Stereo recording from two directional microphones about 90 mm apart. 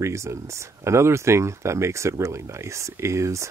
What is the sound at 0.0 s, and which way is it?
Speech, 35° right (ahead or behind).